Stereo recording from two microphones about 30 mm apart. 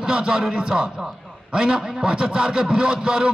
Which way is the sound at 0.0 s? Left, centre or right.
Right.